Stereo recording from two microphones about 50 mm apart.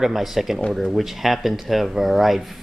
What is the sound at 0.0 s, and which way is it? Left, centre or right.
Speech, centre.